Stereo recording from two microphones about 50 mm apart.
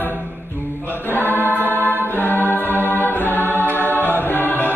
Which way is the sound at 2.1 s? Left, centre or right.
Left.